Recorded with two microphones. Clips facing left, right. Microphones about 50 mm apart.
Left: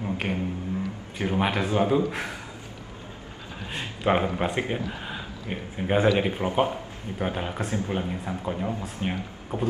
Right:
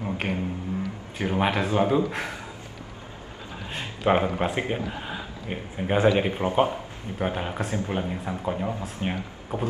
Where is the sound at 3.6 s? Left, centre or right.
Centre.